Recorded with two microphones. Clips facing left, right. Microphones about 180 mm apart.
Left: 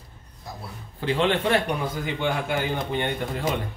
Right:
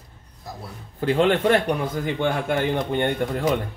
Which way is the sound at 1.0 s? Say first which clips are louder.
Right 4 dB; 45° right (ahead or behind).